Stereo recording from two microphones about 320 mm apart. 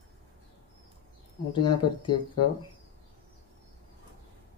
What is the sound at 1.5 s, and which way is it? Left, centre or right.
Speech, centre.